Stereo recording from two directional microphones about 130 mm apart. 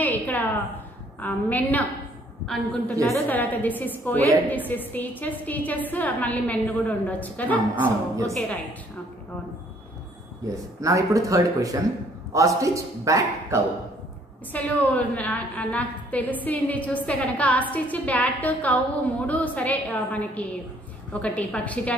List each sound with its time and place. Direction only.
0.0 s a sound: 15° left (ahead or behind)
1.2 s a woman's voice: 15° left (ahead or behind)
10.5 s speech: 25° right (ahead or behind)
14.5 s a woman's voice: 10° left (ahead or behind)